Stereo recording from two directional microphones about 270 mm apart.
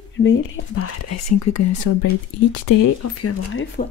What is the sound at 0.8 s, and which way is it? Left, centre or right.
Speech, left.